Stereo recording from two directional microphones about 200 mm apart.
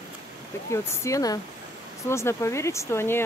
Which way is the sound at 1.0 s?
15° left (ahead or behind).